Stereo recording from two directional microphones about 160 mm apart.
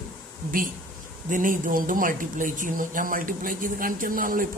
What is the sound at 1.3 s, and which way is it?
Speech, 55° right (ahead or behind).